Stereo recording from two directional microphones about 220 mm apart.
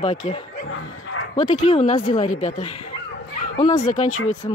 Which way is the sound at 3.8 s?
35° left (ahead or behind).